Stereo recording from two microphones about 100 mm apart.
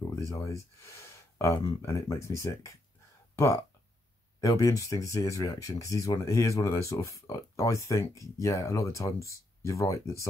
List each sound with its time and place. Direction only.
0.3 s speech: 30° left (ahead or behind)
4.4 s speech: 35° left (ahead or behind)